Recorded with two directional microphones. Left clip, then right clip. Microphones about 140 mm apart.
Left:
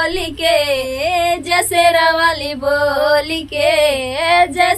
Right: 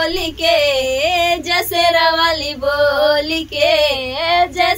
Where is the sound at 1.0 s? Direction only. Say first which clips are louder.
Left 1 dB; 15° right (ahead or behind).